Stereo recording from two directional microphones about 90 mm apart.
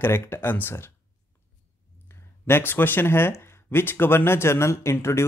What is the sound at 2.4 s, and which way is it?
Speech, 25° left (ahead or behind).